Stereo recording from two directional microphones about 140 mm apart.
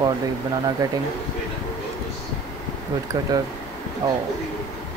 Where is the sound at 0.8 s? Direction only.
25° right (ahead or behind).